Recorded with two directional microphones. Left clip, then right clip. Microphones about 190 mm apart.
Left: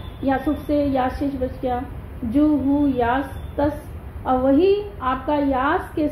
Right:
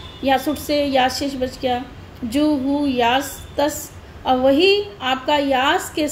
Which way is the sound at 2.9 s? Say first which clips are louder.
Right 3 dB; 15° right (ahead or behind).